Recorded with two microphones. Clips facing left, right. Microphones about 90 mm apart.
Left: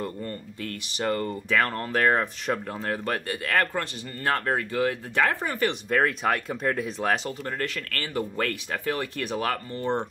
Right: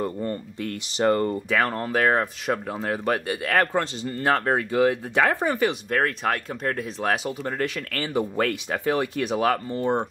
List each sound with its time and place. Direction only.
0.0 s speech: 15° right (ahead or behind)
1.5 s speech: 15° right (ahead or behind)
5.7 s speech: centre (ahead or behind)
7.5 s speech: 20° right (ahead or behind)